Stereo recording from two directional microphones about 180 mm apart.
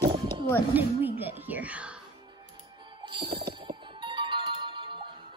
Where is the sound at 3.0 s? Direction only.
30° right (ahead or behind).